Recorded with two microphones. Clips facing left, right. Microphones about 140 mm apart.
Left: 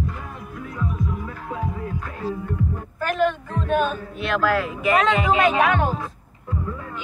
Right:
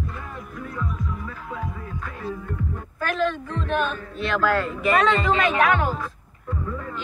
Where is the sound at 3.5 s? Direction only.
45° left (ahead or behind).